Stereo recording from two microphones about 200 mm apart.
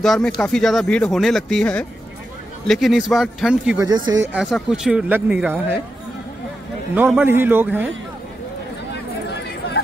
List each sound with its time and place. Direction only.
0.0 s speech: centre (ahead or behind)
3.7 s a man's voice: 20° right (ahead or behind)
4.3 s speech: centre (ahead or behind)
7.0 s a man's voice: 10° right (ahead or behind)